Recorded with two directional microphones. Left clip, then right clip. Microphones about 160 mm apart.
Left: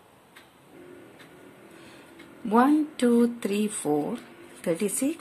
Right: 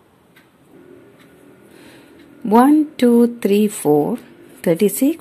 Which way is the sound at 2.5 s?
40° right (ahead or behind).